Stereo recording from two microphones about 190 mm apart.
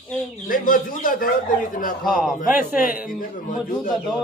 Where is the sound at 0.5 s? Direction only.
45° left (ahead or behind).